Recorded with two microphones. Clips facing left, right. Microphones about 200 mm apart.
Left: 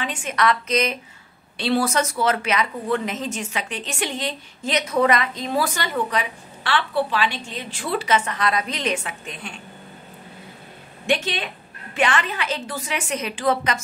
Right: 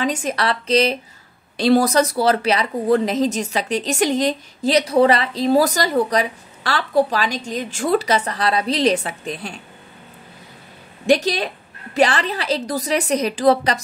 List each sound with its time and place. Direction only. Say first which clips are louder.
0.0 s a woman's voice: right 2 dB; 40° right (ahead or behind)
11.1 s a woman's voice: right 7 dB; 40° right (ahead or behind)